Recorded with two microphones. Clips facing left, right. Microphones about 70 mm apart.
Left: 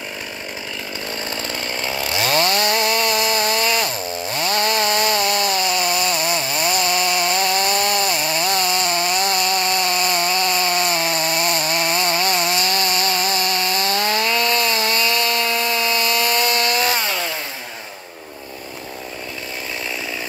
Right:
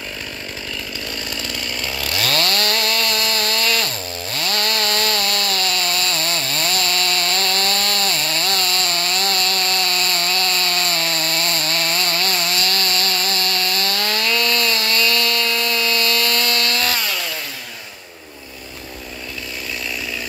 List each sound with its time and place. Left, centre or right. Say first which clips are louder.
1.3 s chainsaw: left 2 dB; left